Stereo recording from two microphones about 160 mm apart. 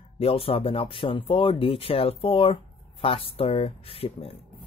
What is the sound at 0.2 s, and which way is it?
Speech, 35° left (ahead or behind).